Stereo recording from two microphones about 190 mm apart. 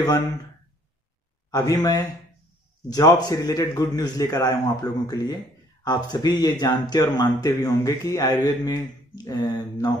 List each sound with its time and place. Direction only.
1.5 s speech: 20° left (ahead or behind)